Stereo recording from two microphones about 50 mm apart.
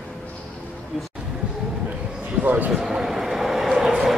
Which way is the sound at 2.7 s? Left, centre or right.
Centre.